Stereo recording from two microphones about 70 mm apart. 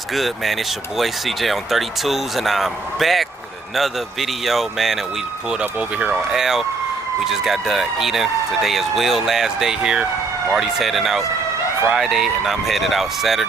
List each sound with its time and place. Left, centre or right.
0.1 s speech: centre
5.5 s speech: centre
6.3 s speech: centre